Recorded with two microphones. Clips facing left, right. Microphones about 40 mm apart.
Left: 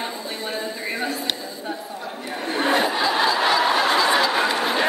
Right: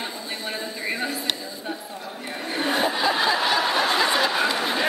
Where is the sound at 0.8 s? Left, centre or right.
Centre.